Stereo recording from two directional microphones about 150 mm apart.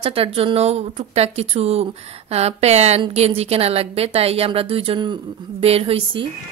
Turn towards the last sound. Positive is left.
turn(degrees=-40)  # may be behind; listen again after turning